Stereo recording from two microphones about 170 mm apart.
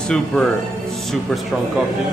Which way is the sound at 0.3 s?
5° left (ahead or behind).